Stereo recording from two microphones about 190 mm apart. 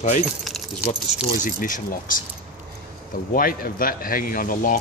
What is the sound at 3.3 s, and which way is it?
Speech, 50° left (ahead or behind).